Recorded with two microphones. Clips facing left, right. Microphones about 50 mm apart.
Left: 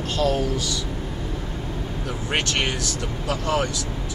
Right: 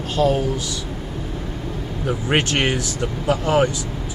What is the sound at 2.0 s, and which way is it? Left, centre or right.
A man's voice, right.